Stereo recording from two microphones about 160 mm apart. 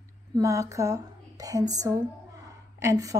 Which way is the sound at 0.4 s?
20° right (ahead or behind).